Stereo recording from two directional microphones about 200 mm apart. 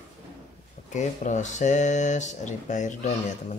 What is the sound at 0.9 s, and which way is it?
A man's voice, 35° left (ahead or behind).